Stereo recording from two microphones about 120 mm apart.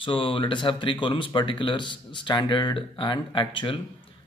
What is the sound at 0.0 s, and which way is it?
Speech, 45° left (ahead or behind).